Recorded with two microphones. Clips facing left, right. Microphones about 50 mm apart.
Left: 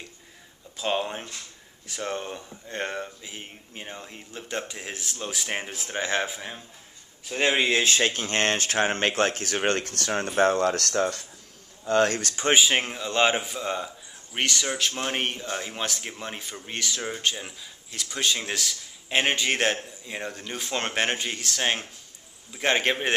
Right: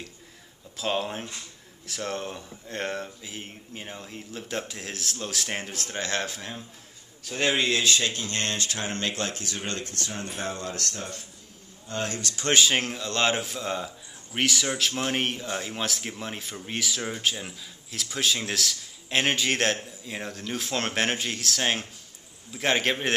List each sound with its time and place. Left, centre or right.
0.7 s speech: centre
7.8 s speech: left
12.1 s speech: left
12.4 s speech: centre